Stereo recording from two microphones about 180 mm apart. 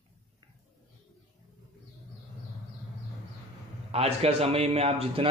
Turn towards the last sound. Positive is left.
turn(degrees=-30)  # may be behind; listen again after turning